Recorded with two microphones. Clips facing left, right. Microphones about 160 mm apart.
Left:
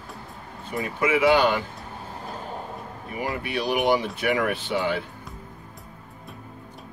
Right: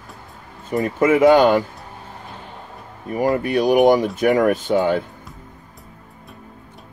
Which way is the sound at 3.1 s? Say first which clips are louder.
Right 10 dB; 45° right (ahead or behind).